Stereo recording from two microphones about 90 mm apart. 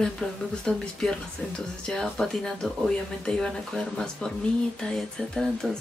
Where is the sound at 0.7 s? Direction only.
10° left (ahead or behind).